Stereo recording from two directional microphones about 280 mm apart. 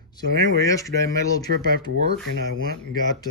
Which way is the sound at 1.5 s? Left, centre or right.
Right.